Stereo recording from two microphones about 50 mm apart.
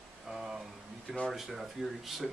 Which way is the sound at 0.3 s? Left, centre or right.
Centre.